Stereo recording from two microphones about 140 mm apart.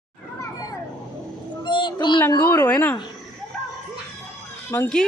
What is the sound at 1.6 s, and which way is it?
Child singing, 30° left (ahead or behind).